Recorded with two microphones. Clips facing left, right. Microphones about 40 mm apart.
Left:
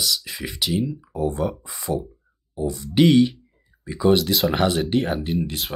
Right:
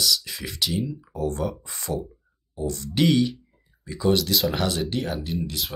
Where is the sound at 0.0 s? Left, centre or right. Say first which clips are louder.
Even; centre.